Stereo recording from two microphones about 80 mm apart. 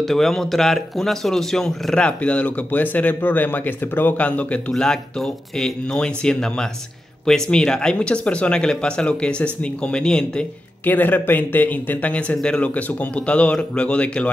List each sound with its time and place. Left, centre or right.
0.0 s speech: centre
10.9 s speech: left